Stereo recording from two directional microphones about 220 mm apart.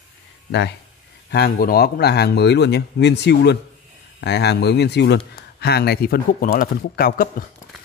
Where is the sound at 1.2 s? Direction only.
45° left (ahead or behind).